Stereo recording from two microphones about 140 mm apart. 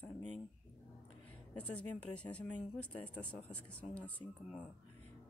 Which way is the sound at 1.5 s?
10° left (ahead or behind).